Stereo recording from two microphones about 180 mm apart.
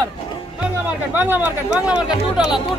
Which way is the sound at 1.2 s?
10° right (ahead or behind).